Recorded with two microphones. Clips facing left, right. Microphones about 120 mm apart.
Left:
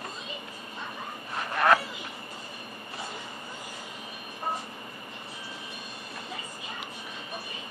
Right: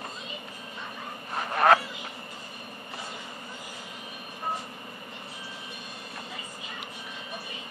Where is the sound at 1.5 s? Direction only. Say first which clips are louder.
Right 2 dB; 30° right (ahead or behind).